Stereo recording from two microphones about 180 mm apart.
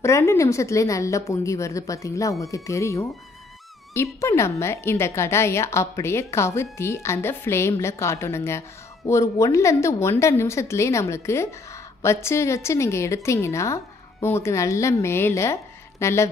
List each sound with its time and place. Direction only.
0.0 s speech: 15° left (ahead or behind)